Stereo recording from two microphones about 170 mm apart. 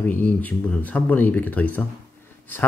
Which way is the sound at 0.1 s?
10° left (ahead or behind).